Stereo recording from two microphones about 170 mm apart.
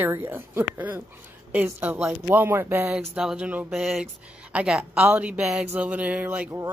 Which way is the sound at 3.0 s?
5° right (ahead or behind).